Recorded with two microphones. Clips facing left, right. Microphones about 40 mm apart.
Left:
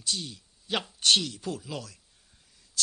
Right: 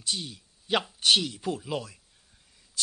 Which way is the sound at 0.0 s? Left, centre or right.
Centre.